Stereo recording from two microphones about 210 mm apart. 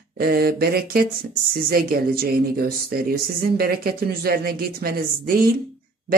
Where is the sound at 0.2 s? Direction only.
45° right (ahead or behind).